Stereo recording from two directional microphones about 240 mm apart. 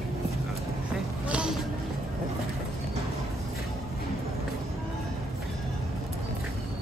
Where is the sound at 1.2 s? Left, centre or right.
Centre.